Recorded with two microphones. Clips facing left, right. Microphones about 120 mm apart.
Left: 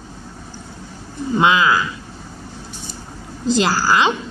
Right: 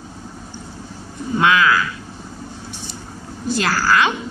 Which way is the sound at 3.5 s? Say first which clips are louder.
Left 1 dB; 30° left (ahead or behind).